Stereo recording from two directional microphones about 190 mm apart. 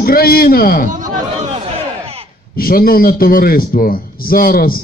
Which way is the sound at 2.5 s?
50° left (ahead or behind).